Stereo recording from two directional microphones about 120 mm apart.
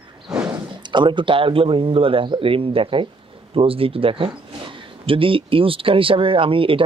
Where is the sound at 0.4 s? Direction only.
40° right (ahead or behind).